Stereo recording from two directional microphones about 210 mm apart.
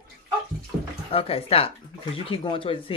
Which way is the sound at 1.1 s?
25° left (ahead or behind).